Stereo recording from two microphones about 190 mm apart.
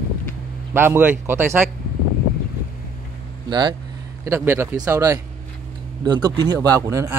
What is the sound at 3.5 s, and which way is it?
A man's voice, 20° right (ahead or behind).